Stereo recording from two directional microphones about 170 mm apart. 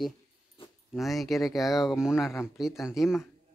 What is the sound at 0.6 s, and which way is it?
Dog, 30° left (ahead or behind).